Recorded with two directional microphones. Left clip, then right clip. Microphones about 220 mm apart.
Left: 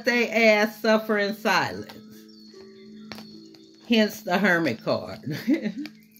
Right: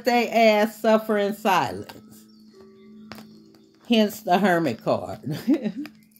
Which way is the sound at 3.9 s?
45° right (ahead or behind).